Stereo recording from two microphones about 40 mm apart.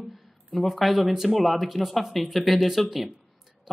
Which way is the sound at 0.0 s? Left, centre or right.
Centre.